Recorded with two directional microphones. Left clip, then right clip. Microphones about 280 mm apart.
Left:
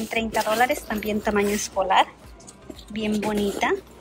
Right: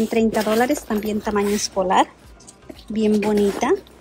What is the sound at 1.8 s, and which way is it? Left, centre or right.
Speech, centre.